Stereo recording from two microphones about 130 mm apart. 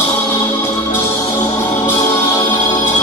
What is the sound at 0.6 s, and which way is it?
Music, 20° left (ahead or behind).